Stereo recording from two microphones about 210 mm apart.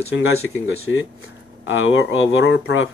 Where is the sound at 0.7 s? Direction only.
70° left (ahead or behind).